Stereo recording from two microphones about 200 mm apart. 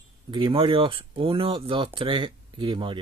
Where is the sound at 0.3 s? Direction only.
25° right (ahead or behind).